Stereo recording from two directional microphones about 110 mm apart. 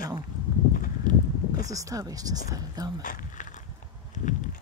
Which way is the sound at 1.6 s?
30° right (ahead or behind).